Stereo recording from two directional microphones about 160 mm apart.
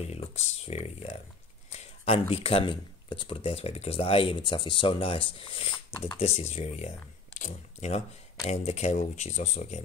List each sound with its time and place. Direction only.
0.0 s speech: 40° left (ahead or behind)